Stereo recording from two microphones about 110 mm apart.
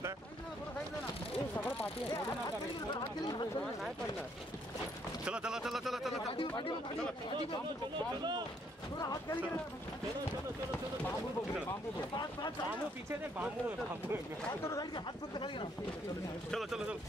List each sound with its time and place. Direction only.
1.6 s a sound: 20° left (ahead or behind)
5.2 s speech: 10° right (ahead or behind)
6.3 s speech: 55° left (ahead or behind)
8.2 s speech: 45° right (ahead or behind)
8.9 s speech: 35° left (ahead or behind)
12.2 s speech: 40° left (ahead or behind)
13.4 s speech: 15° right (ahead or behind)
14.6 s speech: 30° left (ahead or behind)
15.3 s speech: 50° left (ahead or behind)
16.4 s speech: 5° left (ahead or behind)